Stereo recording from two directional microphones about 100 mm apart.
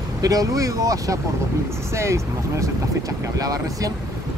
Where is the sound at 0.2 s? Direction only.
35° right (ahead or behind).